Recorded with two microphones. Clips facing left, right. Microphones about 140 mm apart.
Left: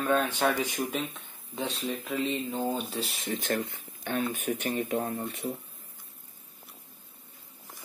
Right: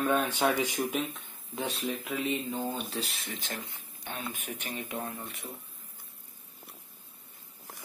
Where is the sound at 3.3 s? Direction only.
50° left (ahead or behind).